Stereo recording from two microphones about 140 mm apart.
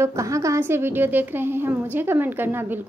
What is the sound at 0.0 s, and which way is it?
A woman's voice, 20° right (ahead or behind).